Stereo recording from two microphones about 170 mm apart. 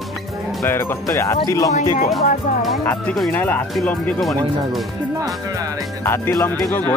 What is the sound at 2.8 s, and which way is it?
Speech, 5° left (ahead or behind).